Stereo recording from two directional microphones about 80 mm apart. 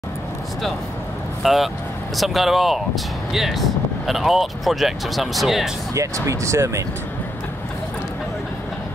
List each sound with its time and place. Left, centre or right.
1.4 s speech: centre
5.9 s speech: right